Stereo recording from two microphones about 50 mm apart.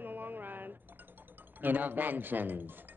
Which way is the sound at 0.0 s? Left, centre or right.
Right.